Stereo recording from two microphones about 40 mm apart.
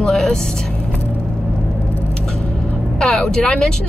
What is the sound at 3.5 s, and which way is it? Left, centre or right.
Speech, centre.